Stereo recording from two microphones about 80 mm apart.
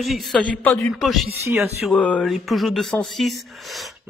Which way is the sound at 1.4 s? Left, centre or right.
Right.